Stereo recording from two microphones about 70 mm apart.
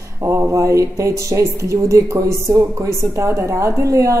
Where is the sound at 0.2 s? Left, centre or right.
Right.